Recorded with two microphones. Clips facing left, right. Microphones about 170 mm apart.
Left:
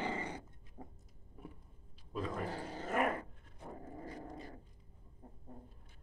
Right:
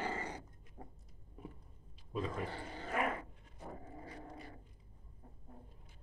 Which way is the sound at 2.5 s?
40° left (ahead or behind).